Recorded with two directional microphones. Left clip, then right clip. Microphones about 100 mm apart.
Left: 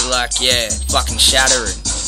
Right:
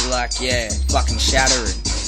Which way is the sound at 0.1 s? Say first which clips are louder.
Left 5 dB; 30° right (ahead or behind).